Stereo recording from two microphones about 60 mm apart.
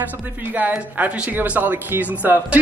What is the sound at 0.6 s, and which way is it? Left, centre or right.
Speech, right.